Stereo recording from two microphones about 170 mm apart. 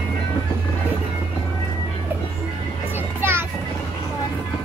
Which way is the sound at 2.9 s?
15° right (ahead or behind).